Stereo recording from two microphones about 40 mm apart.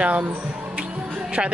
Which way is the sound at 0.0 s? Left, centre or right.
Right.